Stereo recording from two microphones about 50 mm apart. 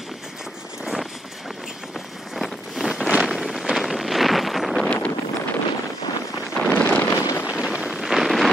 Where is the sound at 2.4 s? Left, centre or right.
Centre.